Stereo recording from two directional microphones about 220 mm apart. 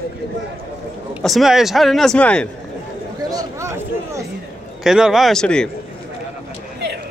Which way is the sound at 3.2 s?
15° right (ahead or behind).